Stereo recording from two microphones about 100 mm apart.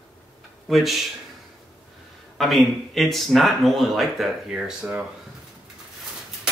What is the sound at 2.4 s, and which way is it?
Speech, centre (ahead or behind).